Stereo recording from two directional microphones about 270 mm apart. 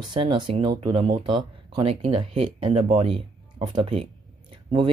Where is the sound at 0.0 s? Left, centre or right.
Centre.